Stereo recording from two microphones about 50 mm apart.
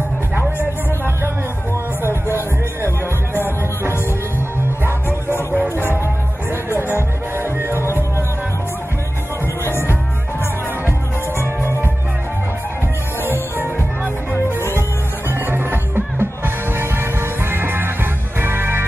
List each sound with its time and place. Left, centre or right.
6.5 s music: right
10.9 s music: left
14.6 s music: left
15.3 s music: right